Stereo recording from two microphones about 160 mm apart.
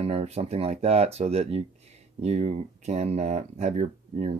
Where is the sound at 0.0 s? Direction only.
40° right (ahead or behind).